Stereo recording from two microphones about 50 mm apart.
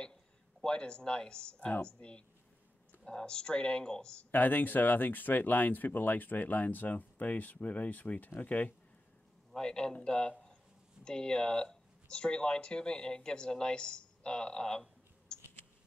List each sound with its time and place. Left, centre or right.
0.0 s a sound: centre
1.6 s speech: left
4.3 s speech: left
9.6 s speech: centre